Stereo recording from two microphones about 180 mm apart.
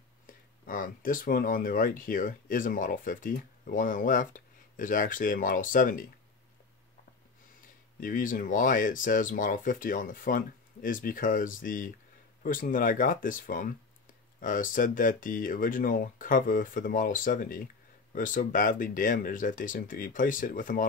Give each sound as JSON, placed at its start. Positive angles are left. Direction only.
{"t": 0.3, "sound": "speech", "side_deg": 50}
{"t": 8.0, "sound": "speech", "side_deg": 50}